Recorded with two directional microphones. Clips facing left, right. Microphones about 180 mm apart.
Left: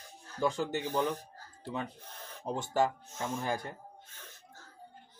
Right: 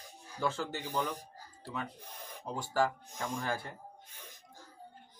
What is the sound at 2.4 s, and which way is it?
Speech, 25° left (ahead or behind).